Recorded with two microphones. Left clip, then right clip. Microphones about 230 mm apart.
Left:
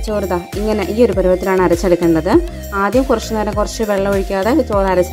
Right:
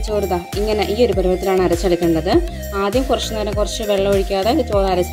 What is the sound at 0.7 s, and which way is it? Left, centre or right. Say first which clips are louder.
Speech: left 2 dB; left.